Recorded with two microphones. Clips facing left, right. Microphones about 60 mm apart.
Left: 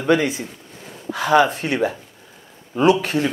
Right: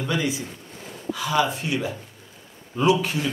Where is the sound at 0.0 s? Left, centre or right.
Left.